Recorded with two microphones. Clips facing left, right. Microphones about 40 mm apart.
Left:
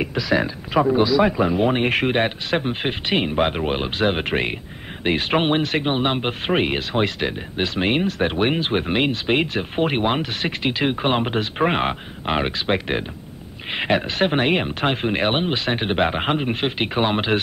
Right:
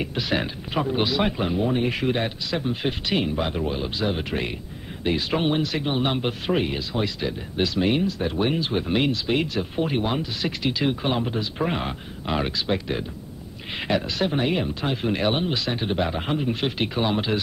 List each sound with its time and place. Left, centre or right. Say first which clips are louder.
1.6 s speech: left 2 dB; left
3.3 s speech: left 5 dB; left
7.5 s speech: even; left
9.8 s speech: left 5 dB; left
10.4 s speech: even; left
13.7 s speech: left 4 dB; left
14.3 s speech: left 4 dB; left
15.0 s speech: right 1 dB; left
16.5 s speech: left 3 dB; left